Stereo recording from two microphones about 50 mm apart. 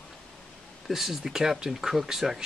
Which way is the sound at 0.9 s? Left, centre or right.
Centre.